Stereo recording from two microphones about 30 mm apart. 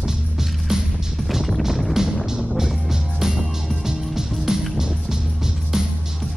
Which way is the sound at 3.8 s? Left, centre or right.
Centre.